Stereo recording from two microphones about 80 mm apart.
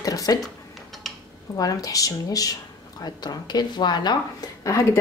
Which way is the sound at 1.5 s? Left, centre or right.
Left.